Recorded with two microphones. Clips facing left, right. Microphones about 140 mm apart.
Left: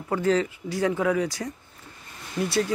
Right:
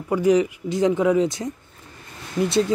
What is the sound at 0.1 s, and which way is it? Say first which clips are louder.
Speech: right 5 dB; 15° right (ahead or behind).